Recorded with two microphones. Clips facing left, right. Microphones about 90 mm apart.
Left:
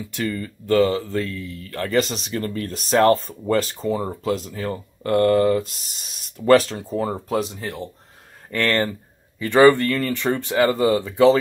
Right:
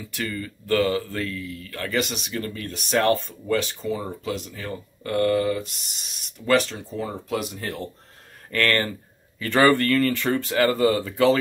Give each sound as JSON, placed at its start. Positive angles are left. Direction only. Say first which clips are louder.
{"t": 0.0, "sound": "speech", "louder": "left 4 dB", "side_deg": 25}
{"t": 7.5, "sound": "speech", "louder": "left 1 dB", "side_deg": 20}